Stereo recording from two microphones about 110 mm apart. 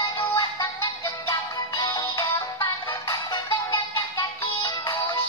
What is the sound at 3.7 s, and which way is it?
Music, 45° left (ahead or behind).